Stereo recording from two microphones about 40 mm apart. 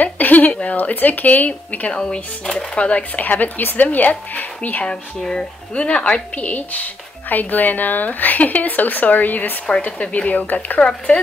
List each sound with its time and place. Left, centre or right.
0.0 s a sound: left
1.9 s speech: left
2.8 s speech: left
3.2 s speech: left
5.2 s speech: centre
5.8 s speech: left
9.8 s speech: left